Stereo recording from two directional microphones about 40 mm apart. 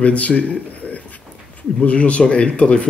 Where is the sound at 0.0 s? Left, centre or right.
Left.